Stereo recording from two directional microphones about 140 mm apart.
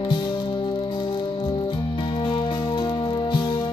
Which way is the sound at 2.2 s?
35° left (ahead or behind).